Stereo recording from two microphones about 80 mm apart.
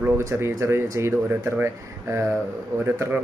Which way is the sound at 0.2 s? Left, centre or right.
Right.